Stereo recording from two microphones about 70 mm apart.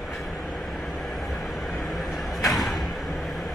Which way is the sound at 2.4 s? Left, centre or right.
Centre.